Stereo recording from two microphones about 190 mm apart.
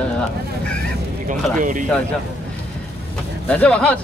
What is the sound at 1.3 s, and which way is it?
Speech, 45° right (ahead or behind).